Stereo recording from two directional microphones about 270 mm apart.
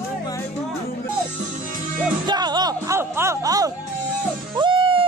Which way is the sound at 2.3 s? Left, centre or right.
Centre.